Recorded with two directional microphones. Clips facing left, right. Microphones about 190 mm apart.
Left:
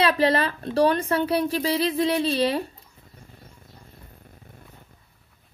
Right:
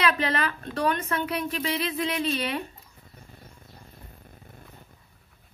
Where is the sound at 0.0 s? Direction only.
30° left (ahead or behind).